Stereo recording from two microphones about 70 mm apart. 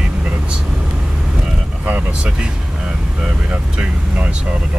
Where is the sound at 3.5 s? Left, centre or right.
Centre.